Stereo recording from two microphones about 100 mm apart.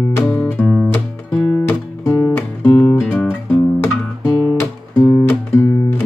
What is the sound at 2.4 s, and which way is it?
Music, 15° left (ahead or behind).